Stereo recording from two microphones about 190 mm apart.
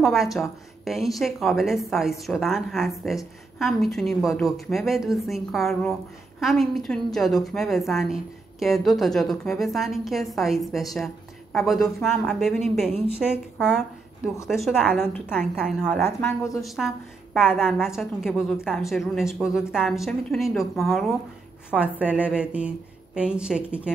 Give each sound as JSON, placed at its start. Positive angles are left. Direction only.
{"t": 0.0, "sound": "a woman's voice", "side_deg": 0}
{"t": 15.0, "sound": "a woman's voice", "side_deg": 10}
{"t": 15.3, "sound": "a woman's voice", "side_deg": -5}